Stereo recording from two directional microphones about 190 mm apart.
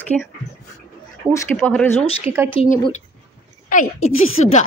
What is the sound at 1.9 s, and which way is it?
Speech, 30° left (ahead or behind).